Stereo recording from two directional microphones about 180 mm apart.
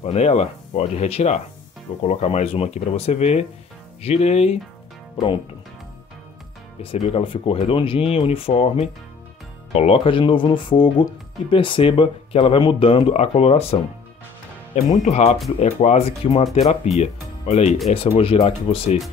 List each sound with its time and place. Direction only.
0.0 s speech: 35° left (ahead or behind)
5.1 s speech: 25° left (ahead or behind)
6.8 s speech: 30° left (ahead or behind)
15.0 s speech: 40° left (ahead or behind)